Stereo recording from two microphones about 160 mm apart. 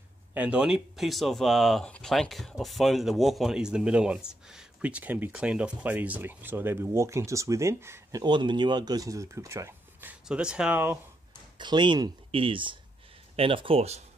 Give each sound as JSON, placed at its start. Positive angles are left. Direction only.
{"t": 0.3, "sound": "speech", "side_deg": -10}
{"t": 8.2, "sound": "speech", "side_deg": -30}
{"t": 11.5, "sound": "speech", "side_deg": -30}